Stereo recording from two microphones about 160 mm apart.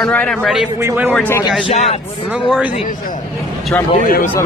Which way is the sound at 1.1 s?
10° left (ahead or behind).